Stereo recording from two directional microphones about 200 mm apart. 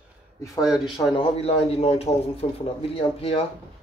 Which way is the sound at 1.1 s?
30° left (ahead or behind).